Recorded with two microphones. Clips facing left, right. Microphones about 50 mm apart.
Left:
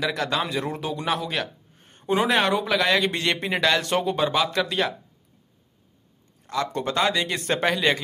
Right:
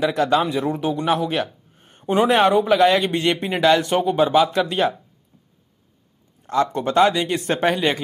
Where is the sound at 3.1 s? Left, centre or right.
Centre.